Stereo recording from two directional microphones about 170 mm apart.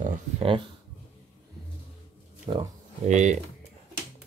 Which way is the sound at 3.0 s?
45° right (ahead or behind).